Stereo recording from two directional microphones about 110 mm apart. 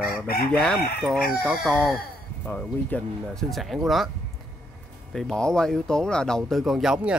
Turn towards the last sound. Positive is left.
turn(degrees=-10)  # may be behind; listen again after turning